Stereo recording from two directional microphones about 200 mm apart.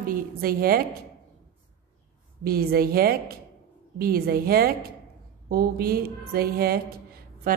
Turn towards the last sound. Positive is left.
turn(degrees=-50)  # may be behind; listen again after turning